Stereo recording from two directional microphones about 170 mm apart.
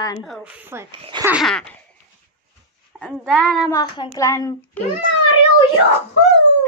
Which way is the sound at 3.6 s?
25° left (ahead or behind).